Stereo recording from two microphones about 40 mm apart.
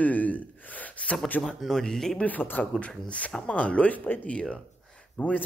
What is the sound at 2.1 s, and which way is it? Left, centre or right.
Speech, left.